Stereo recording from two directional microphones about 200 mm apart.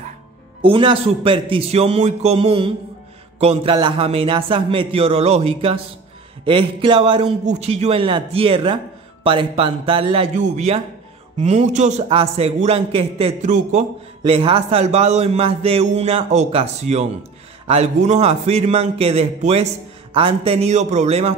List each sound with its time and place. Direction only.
0.6 s a man's voice: 25° right (ahead or behind)